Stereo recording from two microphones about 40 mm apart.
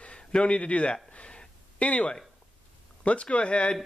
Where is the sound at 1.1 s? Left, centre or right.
Left.